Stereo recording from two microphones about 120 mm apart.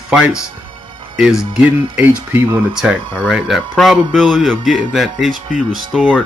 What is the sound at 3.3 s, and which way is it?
A man's voice, centre (ahead or behind).